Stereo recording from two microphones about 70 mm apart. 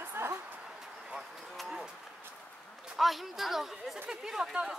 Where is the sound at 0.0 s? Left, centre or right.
Right.